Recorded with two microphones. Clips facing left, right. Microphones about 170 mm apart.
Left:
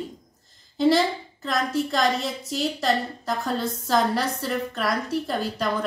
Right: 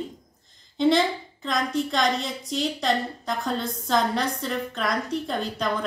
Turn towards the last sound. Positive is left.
turn(degrees=5)  # may be behind; listen again after turning